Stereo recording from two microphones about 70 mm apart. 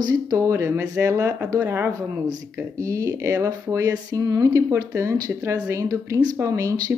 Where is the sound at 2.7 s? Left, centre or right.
Right.